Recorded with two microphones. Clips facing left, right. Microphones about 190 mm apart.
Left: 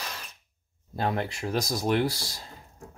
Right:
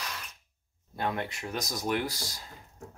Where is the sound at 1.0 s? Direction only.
30° left (ahead or behind).